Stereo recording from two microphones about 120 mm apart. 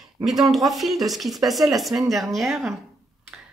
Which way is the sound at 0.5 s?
Centre (ahead or behind).